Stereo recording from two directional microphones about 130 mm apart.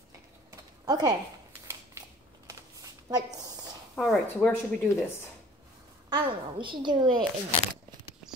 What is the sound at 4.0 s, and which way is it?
Speech, 10° left (ahead or behind).